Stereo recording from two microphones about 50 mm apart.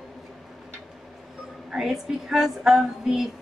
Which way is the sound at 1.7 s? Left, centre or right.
Centre.